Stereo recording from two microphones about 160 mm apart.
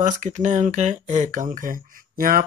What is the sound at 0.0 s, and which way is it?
Speech, 50° right (ahead or behind).